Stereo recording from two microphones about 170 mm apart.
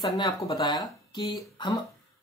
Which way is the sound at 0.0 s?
25° left (ahead or behind).